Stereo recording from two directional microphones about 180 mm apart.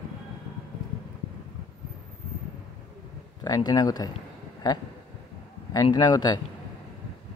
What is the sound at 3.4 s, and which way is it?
Speech, 20° left (ahead or behind).